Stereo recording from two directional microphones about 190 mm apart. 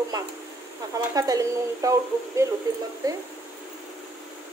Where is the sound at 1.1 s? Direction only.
20° right (ahead or behind).